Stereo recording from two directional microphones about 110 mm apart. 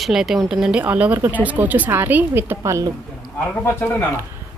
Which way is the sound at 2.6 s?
30° right (ahead or behind).